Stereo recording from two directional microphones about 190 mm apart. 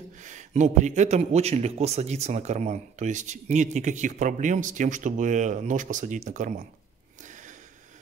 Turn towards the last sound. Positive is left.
turn(degrees=-40)  # may be behind; listen again after turning